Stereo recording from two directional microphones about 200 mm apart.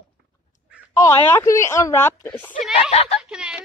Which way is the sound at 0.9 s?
15° left (ahead or behind).